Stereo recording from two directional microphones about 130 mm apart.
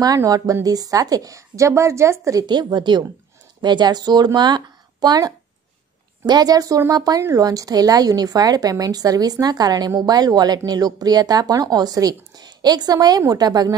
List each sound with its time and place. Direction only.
0.0 s speech: 30° right (ahead or behind)
2.4 s speech: 35° right (ahead or behind)